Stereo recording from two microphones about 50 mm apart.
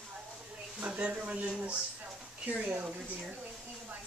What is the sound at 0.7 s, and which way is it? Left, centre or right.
Speech, right.